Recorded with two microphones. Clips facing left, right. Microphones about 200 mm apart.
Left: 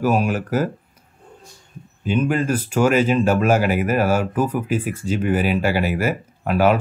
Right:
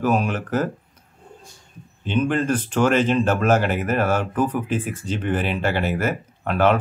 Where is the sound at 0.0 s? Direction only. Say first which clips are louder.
Left 2 dB; 5° left (ahead or behind).